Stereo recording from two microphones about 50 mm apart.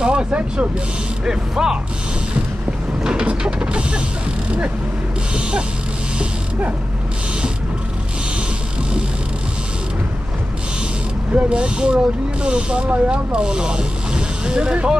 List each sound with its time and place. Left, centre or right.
0.0 s speech: centre
1.2 s speech: centre
3.0 s vehicle: centre
5.3 s speech: centre
11.3 s speech: right